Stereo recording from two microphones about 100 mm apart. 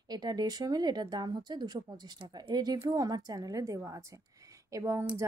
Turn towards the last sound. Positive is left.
turn(degrees=-30)  # may be behind; listen again after turning